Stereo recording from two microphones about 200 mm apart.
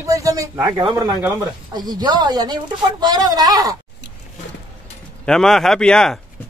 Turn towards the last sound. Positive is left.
turn(degrees=5)  # may be behind; listen again after turning